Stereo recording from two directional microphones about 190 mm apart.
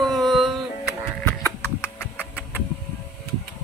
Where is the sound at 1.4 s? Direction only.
10° left (ahead or behind).